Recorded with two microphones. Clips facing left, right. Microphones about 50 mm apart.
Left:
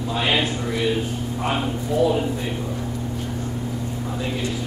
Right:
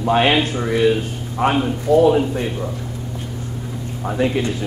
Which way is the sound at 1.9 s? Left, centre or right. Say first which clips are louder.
Right 8 dB; right.